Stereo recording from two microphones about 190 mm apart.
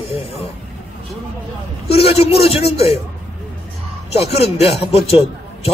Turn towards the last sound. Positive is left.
turn(degrees=30)  # may be behind; listen again after turning